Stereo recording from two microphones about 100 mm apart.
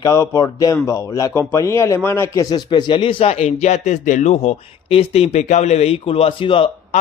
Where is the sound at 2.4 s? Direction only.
45° left (ahead or behind); by 3.6 s 90° left.